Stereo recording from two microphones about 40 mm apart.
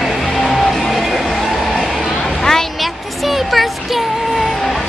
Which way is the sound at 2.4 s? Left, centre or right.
Centre.